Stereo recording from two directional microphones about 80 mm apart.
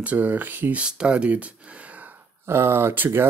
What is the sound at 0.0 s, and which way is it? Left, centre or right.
Speech, centre.